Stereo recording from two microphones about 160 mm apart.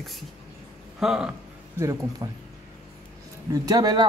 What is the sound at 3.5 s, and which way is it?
Speech, 25° right (ahead or behind).